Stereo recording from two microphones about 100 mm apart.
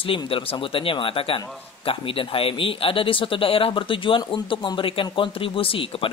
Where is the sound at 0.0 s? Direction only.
65° left (ahead or behind).